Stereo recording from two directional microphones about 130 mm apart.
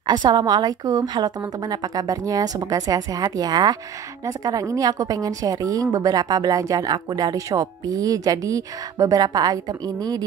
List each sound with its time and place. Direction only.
0.0 s a woman's voice: 35° right (ahead or behind)